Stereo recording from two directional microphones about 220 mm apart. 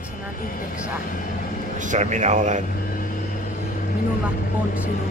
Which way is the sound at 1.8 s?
35° right (ahead or behind).